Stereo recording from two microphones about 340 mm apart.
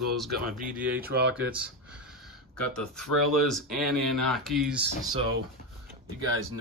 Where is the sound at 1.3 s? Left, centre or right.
Centre.